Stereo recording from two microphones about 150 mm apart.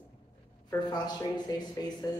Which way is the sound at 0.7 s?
30° left (ahead or behind).